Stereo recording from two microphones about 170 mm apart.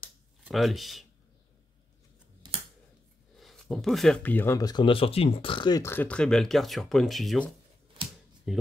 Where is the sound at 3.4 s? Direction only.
Centre (ahead or behind); by 5.8 s 30° left (ahead or behind).